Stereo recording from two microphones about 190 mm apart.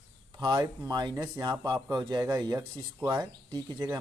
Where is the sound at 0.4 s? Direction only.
15° right (ahead or behind).